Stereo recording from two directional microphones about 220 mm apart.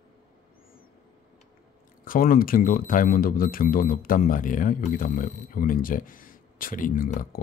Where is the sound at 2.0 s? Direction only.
40° left (ahead or behind).